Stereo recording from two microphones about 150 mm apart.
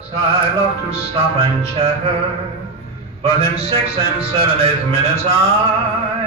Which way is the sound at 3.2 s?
40° right (ahead or behind).